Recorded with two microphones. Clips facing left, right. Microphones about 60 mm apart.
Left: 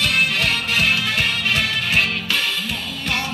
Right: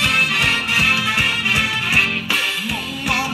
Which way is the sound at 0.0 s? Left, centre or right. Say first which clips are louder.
Right 2 dB; right.